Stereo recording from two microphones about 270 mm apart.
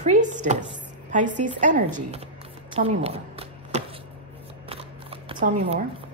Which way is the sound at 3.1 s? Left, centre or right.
Right.